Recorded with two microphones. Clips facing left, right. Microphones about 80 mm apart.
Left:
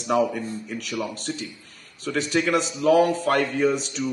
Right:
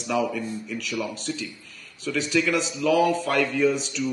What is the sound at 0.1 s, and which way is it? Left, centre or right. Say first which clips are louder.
A man's voice: left 3 dB; left.